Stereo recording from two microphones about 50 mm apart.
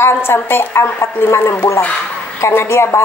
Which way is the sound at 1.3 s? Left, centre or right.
Left.